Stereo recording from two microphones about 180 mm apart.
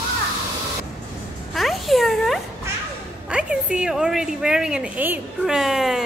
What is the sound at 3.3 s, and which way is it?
A woman's voice, 5° right (ahead or behind).